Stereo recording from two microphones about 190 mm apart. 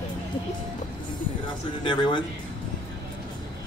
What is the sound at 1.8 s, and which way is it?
Speech, 25° left (ahead or behind).